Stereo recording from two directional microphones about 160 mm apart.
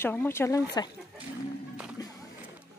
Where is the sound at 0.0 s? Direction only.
15° left (ahead or behind).